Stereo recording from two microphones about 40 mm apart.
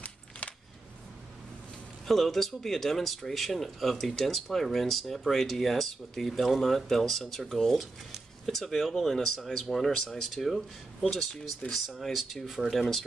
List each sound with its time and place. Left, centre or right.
0.4 s a sound: left
2.0 s speech: centre
11.6 s speech: left
12.0 s speech: centre